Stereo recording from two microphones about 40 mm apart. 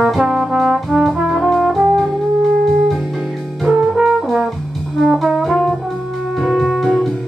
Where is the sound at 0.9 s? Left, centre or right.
Centre.